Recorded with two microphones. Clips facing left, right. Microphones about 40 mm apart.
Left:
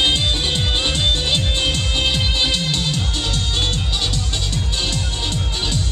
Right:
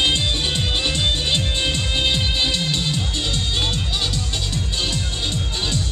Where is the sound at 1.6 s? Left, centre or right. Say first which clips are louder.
Left 1 dB; centre.